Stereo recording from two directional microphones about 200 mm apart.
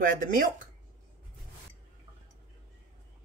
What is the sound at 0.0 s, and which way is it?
Speech, 45° right (ahead or behind).